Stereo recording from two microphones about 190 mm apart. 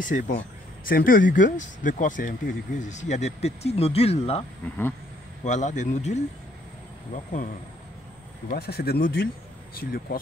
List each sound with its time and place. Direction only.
0.0 s speech: 45° left (ahead or behind)
8.5 s speech: 55° left (ahead or behind)